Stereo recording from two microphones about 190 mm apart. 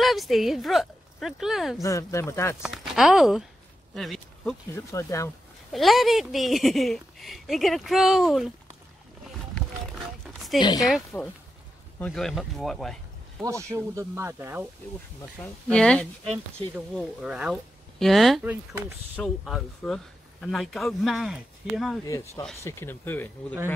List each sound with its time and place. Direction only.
0.0 s speech: centre (ahead or behind)
1.8 s speech: 15° left (ahead or behind)
2.6 s speech: centre (ahead or behind)
4.7 s speech: 15° left (ahead or behind)
5.7 s speech: centre (ahead or behind)
10.6 s speech: 20° left (ahead or behind)
10.9 s speech: centre (ahead or behind)
13.4 s speech: 15° right (ahead or behind)
15.4 s speech: 5° left (ahead or behind)
17.2 s speech: 5° right (ahead or behind)
19.1 s speech: centre (ahead or behind)
22.0 s speech: 15° left (ahead or behind)